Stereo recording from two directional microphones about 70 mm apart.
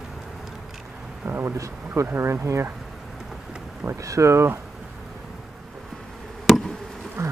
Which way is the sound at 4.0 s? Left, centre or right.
Right.